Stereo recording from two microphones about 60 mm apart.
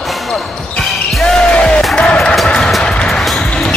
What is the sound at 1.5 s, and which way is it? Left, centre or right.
Music, centre.